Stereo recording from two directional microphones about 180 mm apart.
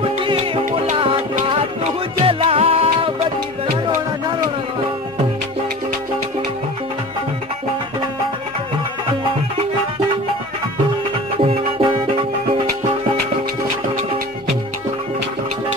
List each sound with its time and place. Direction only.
0.0 s music: 30° right (ahead or behind)
11.3 s music: 30° right (ahead or behind)